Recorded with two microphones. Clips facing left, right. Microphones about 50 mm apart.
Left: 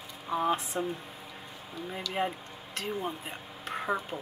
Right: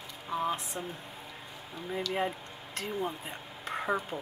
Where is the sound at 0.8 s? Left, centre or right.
Left.